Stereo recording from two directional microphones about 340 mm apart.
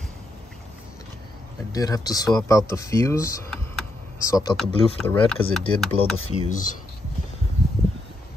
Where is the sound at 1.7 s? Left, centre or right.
Centre.